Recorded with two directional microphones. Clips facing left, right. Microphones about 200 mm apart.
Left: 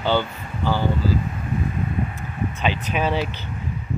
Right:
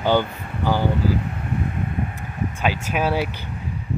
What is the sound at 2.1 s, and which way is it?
Speech, 10° right (ahead or behind).